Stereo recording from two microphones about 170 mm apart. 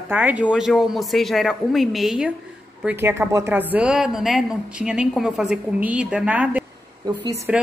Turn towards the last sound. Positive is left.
turn(degrees=-20)  # may be behind; listen again after turning